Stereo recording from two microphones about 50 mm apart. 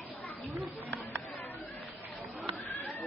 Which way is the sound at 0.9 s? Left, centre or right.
Left.